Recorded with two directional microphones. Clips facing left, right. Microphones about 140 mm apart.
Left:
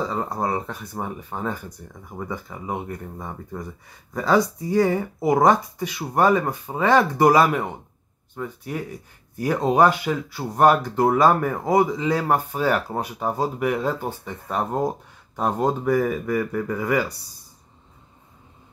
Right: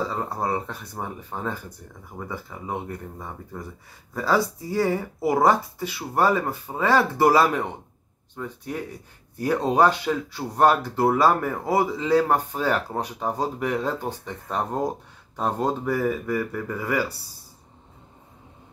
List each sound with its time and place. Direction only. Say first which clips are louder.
0.1 s speech: left 2 dB; 15° left (ahead or behind)